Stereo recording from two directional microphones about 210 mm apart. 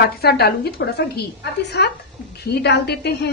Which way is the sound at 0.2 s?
50° left (ahead or behind).